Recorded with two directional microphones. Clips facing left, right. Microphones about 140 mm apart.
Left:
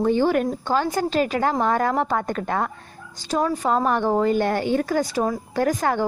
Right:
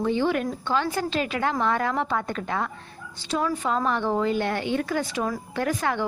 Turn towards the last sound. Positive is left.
turn(degrees=40)  # may be behind; listen again after turning